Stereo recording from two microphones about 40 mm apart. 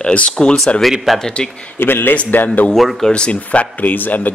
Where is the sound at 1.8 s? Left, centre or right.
Left.